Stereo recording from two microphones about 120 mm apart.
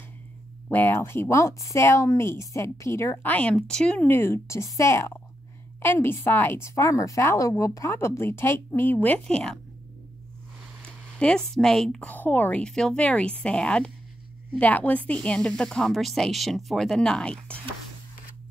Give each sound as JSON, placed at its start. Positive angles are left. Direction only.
{"t": 0.7, "sound": "speech", "side_deg": 15}
{"t": 4.1, "sound": "speech", "side_deg": 20}
{"t": 10.9, "sound": "speech", "side_deg": 10}